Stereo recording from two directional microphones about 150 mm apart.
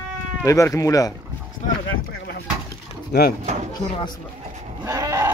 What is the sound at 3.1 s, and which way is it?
Speech, 90° left.